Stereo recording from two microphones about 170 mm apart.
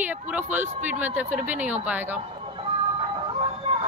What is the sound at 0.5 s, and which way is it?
Speech, 45° right (ahead or behind).